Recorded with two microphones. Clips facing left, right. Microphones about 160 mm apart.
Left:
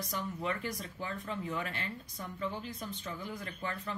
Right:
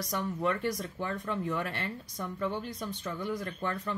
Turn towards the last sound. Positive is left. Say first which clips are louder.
# right 5 dB
turn(degrees=-65)  # may be behind; listen again after turning